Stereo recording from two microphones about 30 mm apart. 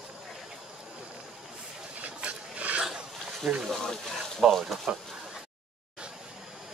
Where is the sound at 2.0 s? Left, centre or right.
Right.